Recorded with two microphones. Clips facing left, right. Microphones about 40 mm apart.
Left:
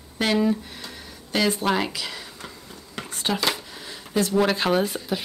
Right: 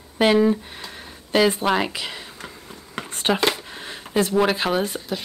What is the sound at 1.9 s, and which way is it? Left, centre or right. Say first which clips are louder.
Speech: right 2 dB; right.